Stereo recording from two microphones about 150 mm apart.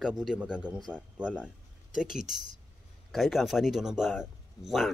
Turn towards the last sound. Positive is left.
turn(degrees=0)  # may be behind; listen again after turning